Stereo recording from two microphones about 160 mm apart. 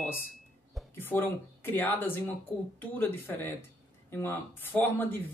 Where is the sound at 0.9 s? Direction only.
10° left (ahead or behind).